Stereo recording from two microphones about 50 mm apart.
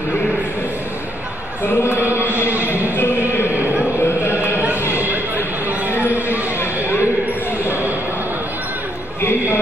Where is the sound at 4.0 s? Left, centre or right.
Left.